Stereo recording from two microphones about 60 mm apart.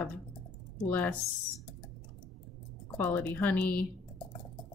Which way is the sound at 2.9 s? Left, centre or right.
Left.